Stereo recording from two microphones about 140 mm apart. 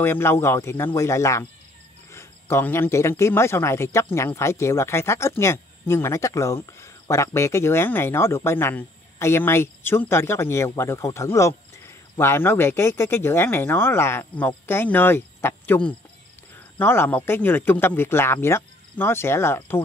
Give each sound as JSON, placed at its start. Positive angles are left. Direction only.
{"t": 0.0, "sound": "speech", "side_deg": 15}